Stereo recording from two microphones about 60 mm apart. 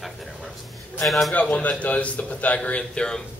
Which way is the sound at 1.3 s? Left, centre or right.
Left.